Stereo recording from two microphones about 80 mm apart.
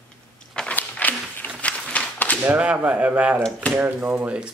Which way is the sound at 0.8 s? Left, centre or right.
Centre.